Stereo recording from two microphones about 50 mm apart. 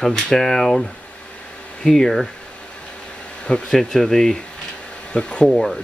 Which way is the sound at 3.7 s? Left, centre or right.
Centre.